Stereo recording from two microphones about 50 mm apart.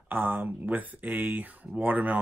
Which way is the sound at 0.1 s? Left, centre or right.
Right.